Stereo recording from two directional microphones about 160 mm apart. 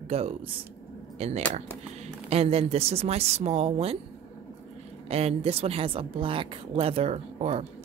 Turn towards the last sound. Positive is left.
turn(degrees=-40)  # may be behind; listen again after turning